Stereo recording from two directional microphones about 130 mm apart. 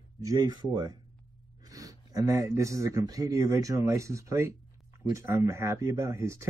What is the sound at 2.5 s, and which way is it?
Speech, 25° right (ahead or behind).